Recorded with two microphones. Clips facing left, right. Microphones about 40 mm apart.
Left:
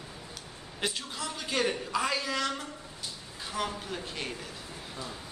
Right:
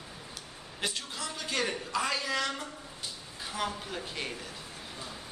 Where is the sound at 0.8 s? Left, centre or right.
Centre.